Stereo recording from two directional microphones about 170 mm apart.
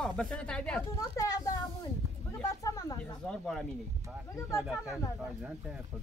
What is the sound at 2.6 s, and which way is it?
Speech, 20° left (ahead or behind).